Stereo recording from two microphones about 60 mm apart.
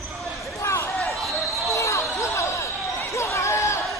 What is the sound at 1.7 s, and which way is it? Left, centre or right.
Basketball bounce, left.